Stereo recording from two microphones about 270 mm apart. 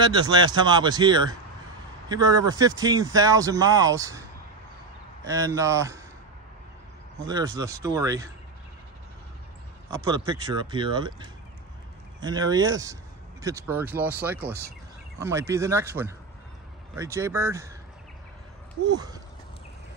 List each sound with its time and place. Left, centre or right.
0.0 s speech: centre
5.2 s speech: centre
7.2 s speech: centre
9.8 s speech: centre
18.9 s speech: centre